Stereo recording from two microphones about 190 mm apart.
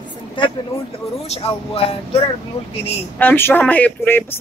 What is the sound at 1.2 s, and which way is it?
Speech, 30° left (ahead or behind).